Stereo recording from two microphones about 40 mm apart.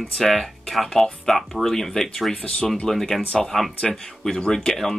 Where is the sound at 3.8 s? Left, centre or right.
Left.